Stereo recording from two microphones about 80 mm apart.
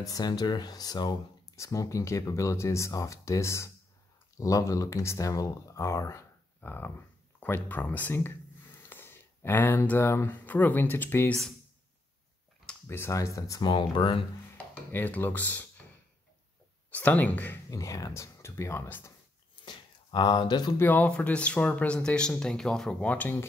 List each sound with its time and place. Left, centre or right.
0.0 s speech: left
1.6 s speech: left
12.8 s speech: left
13.1 s speech: left
13.6 s speech: left
14.9 s speech: left
16.9 s speech: left
17.6 s speech: left
19.6 s speech: left
20.8 s speech: left